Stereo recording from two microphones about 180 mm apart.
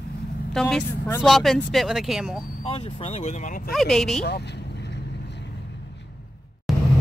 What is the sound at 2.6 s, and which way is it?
Speech, 35° left (ahead or behind).